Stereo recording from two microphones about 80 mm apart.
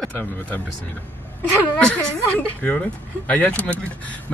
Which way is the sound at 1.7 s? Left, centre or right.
Centre.